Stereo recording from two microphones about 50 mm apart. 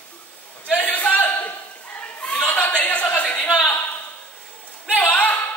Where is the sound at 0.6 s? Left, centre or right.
Left.